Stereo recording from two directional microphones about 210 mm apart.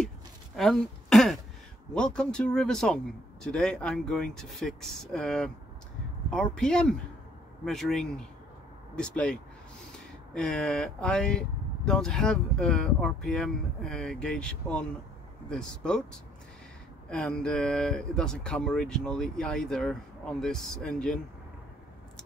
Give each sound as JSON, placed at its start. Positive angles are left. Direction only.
{"t": 0.6, "sound": "throat clearing", "side_deg": 0}
{"t": 2.0, "sound": "speech", "side_deg": 5}